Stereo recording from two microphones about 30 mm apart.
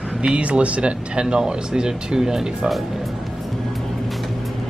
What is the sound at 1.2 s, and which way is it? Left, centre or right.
Speech, right.